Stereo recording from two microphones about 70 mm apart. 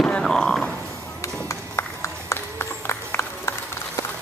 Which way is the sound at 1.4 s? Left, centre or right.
Left.